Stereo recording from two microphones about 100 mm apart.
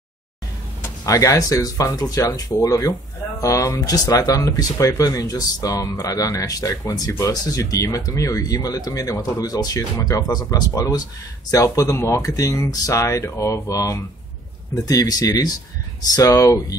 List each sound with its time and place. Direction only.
1.0 s speech: 35° left (ahead or behind)